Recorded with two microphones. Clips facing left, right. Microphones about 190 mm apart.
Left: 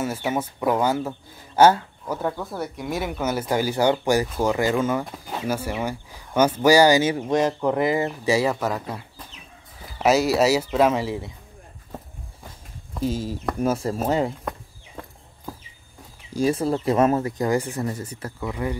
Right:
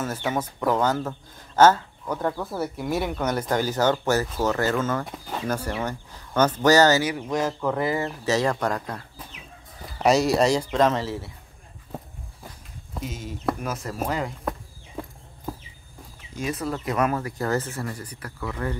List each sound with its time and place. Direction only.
0.0 s speech: 10° left (ahead or behind)
5.0 s speech: centre (ahead or behind)
7.0 s speech: 25° left (ahead or behind)
13.0 s speech: 30° left (ahead or behind)
16.3 s speech: 30° left (ahead or behind); by 18.8 s 15° left (ahead or behind)